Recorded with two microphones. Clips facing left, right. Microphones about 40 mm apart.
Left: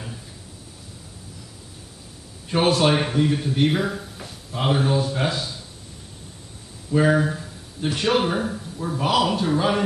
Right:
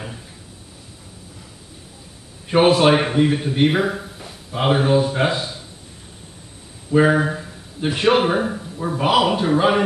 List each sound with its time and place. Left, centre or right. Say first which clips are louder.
2.5 s a man's voice: right 5 dB; right
6.9 s a man's voice: right 3 dB; right